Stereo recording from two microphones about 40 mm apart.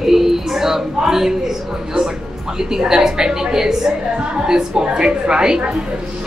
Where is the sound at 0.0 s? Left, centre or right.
Centre.